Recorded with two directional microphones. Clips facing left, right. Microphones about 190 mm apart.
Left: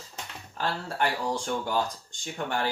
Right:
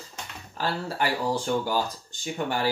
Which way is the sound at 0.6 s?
5° right (ahead or behind).